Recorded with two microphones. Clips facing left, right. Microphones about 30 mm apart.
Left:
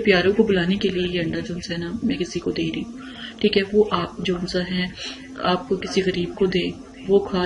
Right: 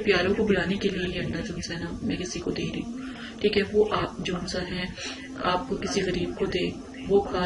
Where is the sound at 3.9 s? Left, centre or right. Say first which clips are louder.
Left 4 dB; left.